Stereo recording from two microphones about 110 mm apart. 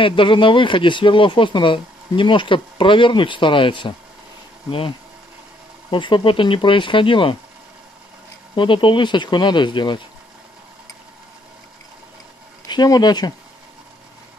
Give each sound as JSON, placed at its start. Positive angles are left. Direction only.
{"t": 0.0, "sound": "speech", "side_deg": 50}
{"t": 8.5, "sound": "speech", "side_deg": 50}
{"t": 12.6, "sound": "speech", "side_deg": 40}